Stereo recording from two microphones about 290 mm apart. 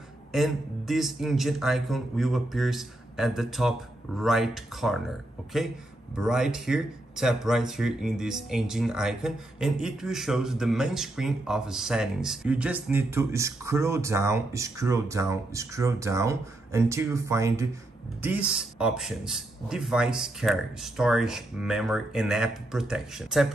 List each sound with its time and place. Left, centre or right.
0.3 s speech: centre